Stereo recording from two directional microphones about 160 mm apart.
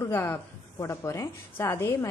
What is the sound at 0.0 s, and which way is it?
A woman's voice, 15° left (ahead or behind).